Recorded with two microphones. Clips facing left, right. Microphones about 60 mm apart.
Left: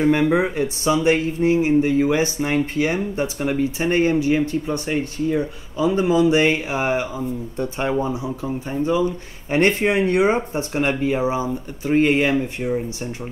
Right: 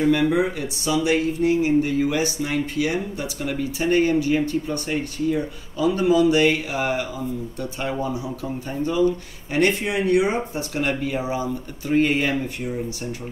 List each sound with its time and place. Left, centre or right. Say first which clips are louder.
0.0 s speech: left 2 dB; left